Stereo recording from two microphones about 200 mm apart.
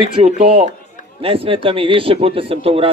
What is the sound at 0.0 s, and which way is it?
A man's voice, 30° right (ahead or behind).